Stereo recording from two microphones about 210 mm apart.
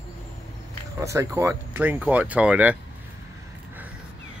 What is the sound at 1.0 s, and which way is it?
Speech, 15° right (ahead or behind).